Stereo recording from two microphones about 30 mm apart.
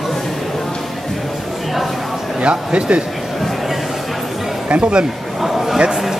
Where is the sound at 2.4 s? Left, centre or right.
Right.